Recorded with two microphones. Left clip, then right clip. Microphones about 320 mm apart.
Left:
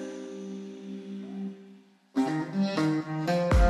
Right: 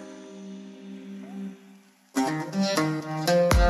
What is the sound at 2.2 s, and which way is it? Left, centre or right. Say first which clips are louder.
Music: right 2 dB; right.